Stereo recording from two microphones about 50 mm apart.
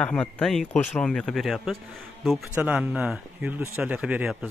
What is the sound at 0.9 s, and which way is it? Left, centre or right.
Speech, centre.